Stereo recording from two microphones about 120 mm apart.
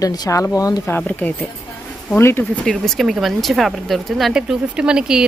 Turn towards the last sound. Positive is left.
turn(degrees=-5)  # may be behind; listen again after turning